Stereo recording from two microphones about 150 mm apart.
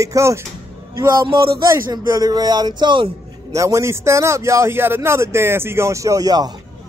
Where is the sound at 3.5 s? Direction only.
20° right (ahead or behind).